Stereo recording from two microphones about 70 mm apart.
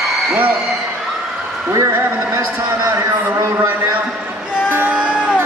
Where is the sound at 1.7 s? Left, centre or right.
Right.